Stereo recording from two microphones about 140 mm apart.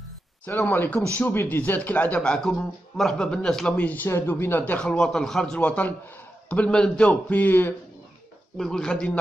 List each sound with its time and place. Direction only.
0.5 s a man's voice: 15° left (ahead or behind)